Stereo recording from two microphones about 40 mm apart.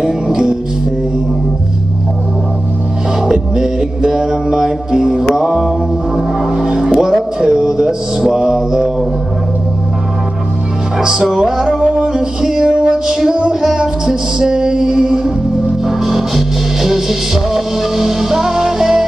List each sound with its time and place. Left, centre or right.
0.0 s music: centre
3.3 s music: centre
11.0 s music: centre